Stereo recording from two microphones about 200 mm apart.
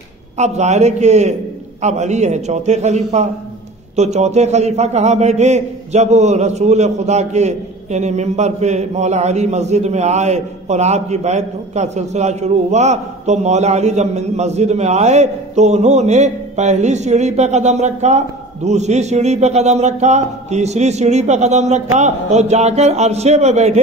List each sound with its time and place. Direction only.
0.4 s a man's voice: 35° right (ahead or behind)